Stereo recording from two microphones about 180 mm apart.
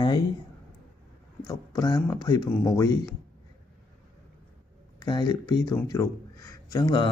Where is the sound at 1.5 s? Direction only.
20° left (ahead or behind).